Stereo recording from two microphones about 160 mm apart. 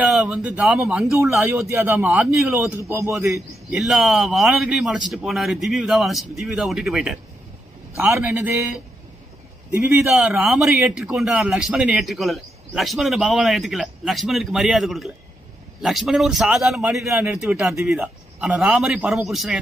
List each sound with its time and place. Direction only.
0.0 s speech: 5° right (ahead or behind)
1.7 s a man's voice: 15° right (ahead or behind)
2.0 s a man's voice: 5° right (ahead or behind)
2.7 s a man's voice: 15° right (ahead or behind)
3.7 s a man's voice: centre (ahead or behind)
8.0 s a man's voice: 15° right (ahead or behind)
9.8 s a man's voice: 5° right (ahead or behind)